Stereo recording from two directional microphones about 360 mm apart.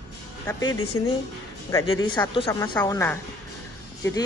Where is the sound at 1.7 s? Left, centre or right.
Centre.